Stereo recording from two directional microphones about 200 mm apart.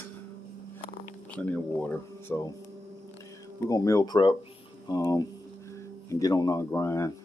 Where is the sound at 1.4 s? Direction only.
10° left (ahead or behind).